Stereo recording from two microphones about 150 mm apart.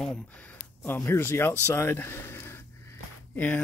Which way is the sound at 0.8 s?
15° left (ahead or behind).